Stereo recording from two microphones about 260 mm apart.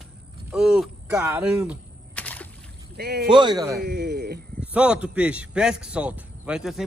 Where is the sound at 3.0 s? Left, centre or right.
Right.